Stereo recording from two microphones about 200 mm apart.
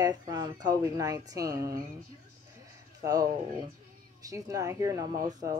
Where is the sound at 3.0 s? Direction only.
20° right (ahead or behind).